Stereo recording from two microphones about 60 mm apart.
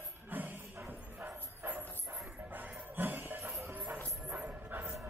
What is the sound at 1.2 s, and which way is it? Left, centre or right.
Bow-wow, right.